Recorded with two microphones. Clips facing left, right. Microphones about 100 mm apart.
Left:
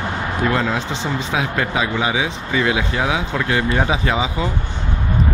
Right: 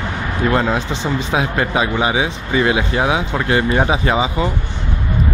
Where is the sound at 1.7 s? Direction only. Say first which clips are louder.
Right 3 dB; 5° right (ahead or behind).